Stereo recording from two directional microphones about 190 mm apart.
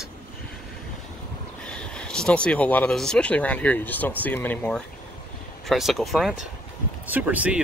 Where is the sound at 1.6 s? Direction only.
5° left (ahead or behind).